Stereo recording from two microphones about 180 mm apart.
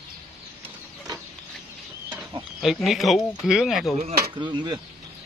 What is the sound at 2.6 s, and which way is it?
Speech, centre (ahead or behind).